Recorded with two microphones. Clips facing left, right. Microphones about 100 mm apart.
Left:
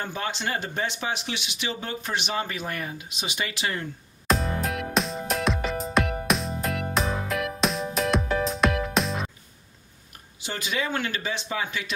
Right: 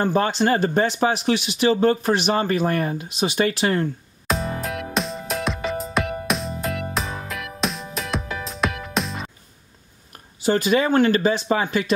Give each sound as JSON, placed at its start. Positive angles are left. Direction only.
{"t": 0.0, "sound": "speech", "side_deg": -40}
{"t": 4.3, "sound": "music", "side_deg": 0}
{"t": 10.4, "sound": "speech", "side_deg": -45}